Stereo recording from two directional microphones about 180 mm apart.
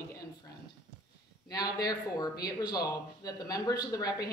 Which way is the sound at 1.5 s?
20° left (ahead or behind).